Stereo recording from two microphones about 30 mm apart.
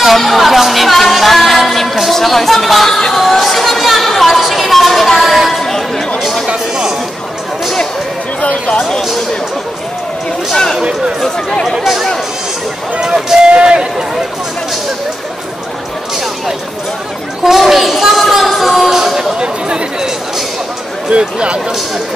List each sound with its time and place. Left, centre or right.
0.0 s music: centre
2.2 s speech: centre
3.2 s chatter: centre
4.4 s a sound: centre
5.6 s chatter: centre
6.1 s a sound: centre
10.5 s speech: centre
10.8 s speech: right
11.2 s speech: left
11.7 s speech: centre
17.4 s a sound: centre
18.9 s music: centre
19.3 s chatter: right
21.1 s speech: right